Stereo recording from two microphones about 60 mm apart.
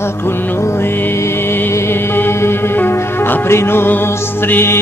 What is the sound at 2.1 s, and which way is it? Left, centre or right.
Music, left.